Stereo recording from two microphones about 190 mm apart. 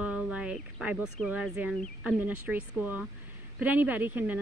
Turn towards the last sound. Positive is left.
turn(degrees=-10)  # may be behind; listen again after turning